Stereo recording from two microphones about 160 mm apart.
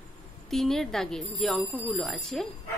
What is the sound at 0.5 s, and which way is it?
Speech, centre (ahead or behind).